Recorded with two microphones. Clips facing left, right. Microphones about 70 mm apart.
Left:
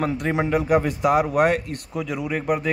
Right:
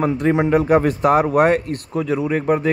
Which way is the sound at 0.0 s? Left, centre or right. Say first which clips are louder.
Right 6 dB; right.